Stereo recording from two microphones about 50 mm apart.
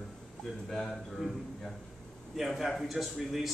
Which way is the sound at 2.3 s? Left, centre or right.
Centre.